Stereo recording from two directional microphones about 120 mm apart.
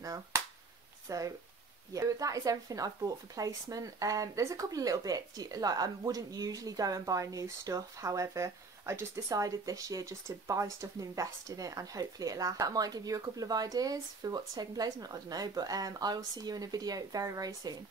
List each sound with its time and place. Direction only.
0.0 s speech: 30° right (ahead or behind)